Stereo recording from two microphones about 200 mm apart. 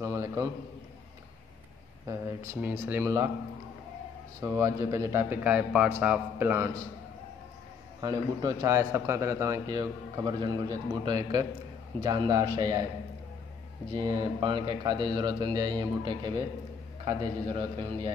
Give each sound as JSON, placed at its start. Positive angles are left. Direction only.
{"t": 0.0, "sound": "a man's voice", "side_deg": -15}
{"t": 2.0, "sound": "a man's voice", "side_deg": -10}
{"t": 4.4, "sound": "a man's voice", "side_deg": -15}
{"t": 8.0, "sound": "a man's voice", "side_deg": -15}
{"t": 13.9, "sound": "speech", "side_deg": -25}